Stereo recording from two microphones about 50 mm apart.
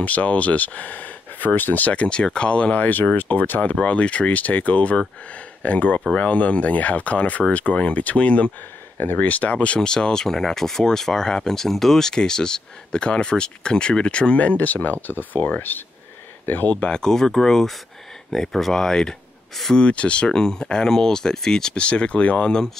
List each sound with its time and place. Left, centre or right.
0.0 s speech: left
2.8 s speech: left
8.9 s speech: left
9.8 s speech: centre; by 16.7 s left
16.8 s speech: centre